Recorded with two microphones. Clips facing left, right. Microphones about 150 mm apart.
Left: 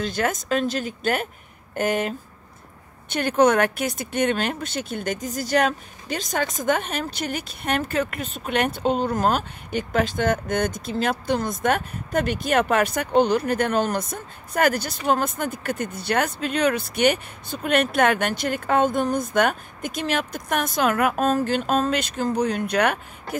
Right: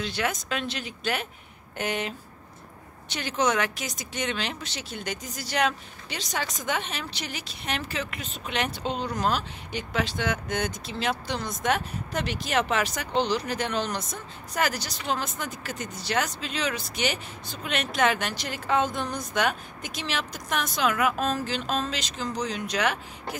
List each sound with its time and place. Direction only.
0.0 s speech: 45° left (ahead or behind)